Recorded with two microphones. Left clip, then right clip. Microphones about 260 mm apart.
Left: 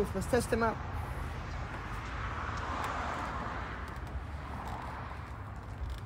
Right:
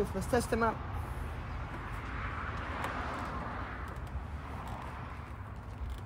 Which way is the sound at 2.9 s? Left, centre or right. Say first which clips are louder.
Left 2 dB; left.